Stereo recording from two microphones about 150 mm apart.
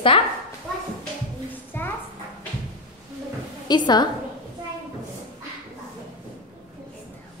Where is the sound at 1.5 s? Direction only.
15° left (ahead or behind).